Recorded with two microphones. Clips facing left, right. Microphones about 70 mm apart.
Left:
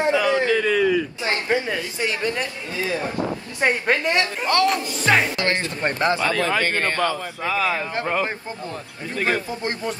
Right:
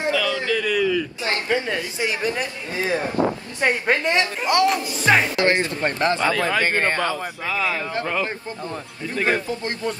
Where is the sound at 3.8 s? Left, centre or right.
Centre.